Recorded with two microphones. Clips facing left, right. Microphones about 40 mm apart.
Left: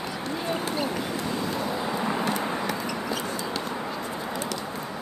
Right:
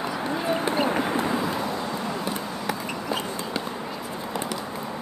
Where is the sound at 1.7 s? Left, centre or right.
Centre.